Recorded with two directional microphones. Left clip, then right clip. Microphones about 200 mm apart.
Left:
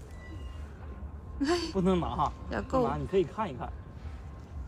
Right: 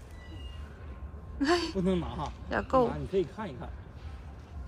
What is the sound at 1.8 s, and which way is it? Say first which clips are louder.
Speech: left 4 dB; 35° left (ahead or behind).